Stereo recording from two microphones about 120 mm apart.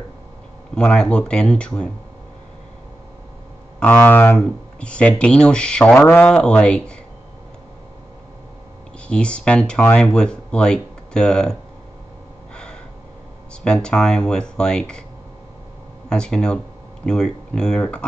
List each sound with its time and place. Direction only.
0.7 s speech: 10° left (ahead or behind)
3.8 s speech: 15° left (ahead or behind)
9.0 s speech: 10° left (ahead or behind)
13.7 s speech: 10° left (ahead or behind)
16.1 s speech: 5° left (ahead or behind)